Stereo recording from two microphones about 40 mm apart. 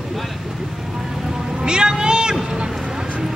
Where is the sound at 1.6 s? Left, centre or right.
Right.